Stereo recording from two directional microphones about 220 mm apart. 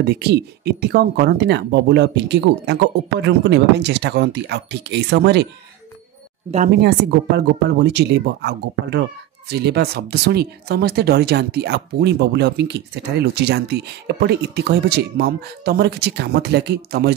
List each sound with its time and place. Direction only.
0.0 s speech: 45° right (ahead or behind)
6.7 s speech: 50° right (ahead or behind)